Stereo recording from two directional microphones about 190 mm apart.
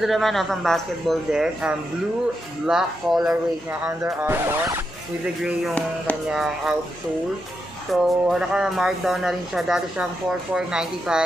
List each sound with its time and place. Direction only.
0.0 s speech: centre (ahead or behind)
7.9 s speech: centre (ahead or behind)